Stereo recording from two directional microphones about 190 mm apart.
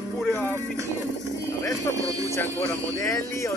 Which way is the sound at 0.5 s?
15° right (ahead or behind).